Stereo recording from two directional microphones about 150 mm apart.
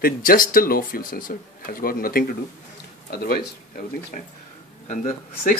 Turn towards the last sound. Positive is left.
turn(degrees=60)  # may be behind; listen again after turning